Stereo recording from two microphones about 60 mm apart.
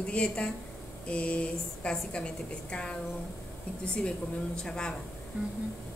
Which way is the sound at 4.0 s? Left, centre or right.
Centre.